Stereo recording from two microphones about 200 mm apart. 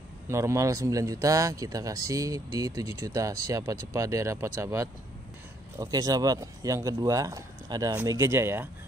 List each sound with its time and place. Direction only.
0.3 s speech: 15° right (ahead or behind)